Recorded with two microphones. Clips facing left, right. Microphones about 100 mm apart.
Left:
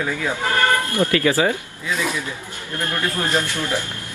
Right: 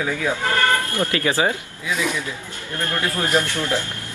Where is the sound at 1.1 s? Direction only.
25° right (ahead or behind).